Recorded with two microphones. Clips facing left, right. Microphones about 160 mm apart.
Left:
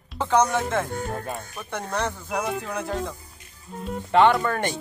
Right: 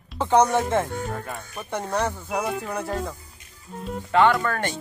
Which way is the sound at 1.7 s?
10° right (ahead or behind).